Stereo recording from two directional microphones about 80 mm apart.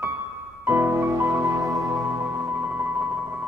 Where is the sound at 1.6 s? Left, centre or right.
Centre.